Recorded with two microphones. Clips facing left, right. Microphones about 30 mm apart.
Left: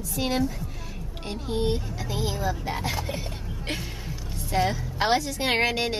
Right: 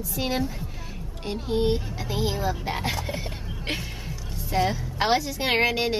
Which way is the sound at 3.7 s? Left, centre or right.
Centre.